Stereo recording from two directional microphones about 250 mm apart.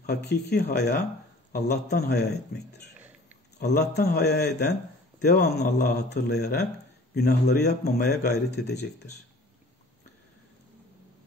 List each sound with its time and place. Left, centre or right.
0.0 s speech: left